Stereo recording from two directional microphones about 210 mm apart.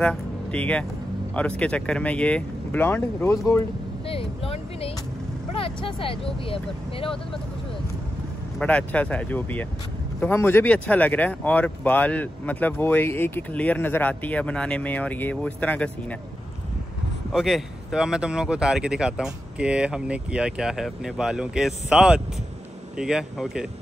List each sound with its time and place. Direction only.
0.0 s speech: 5° left (ahead or behind)
4.1 s a sound: 25° left (ahead or behind)
5.5 s speech: 25° left (ahead or behind)
8.5 s speech: 5° left (ahead or behind)
17.3 s speech: centre (ahead or behind)